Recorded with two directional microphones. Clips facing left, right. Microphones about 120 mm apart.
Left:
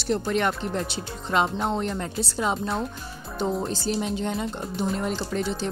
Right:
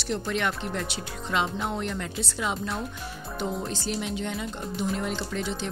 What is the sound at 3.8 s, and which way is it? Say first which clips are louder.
Speech: left 4 dB; 35° left (ahead or behind).